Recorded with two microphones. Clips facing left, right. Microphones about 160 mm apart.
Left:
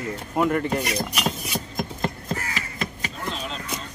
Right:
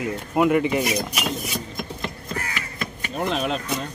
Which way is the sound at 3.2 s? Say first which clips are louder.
Right 9 dB; 65° right (ahead or behind).